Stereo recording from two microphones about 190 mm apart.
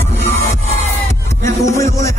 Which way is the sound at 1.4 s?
15° left (ahead or behind).